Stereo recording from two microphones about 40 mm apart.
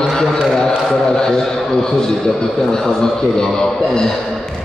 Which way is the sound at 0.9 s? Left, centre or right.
Centre.